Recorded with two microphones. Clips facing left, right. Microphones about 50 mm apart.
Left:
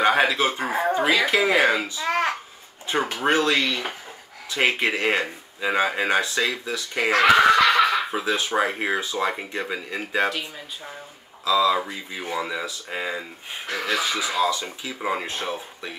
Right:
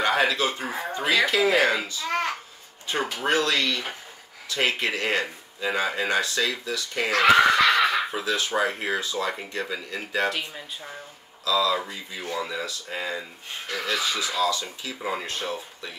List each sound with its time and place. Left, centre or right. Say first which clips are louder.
0.0 s speech: left 3 dB; centre
0.6 s speech: left 7 dB; left
1.2 s speech: left 1 dB; left
1.5 s speech: left 2 dB; centre
2.9 s speech: left 3 dB; left
11.4 s speech: left 3 dB; left